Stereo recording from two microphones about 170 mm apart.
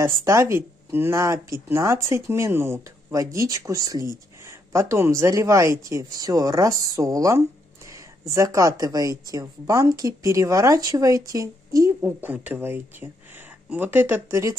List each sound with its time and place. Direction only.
0.0 s a woman's voice: 15° right (ahead or behind)